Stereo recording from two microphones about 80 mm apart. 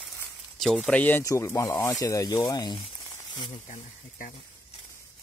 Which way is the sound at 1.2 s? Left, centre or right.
Left.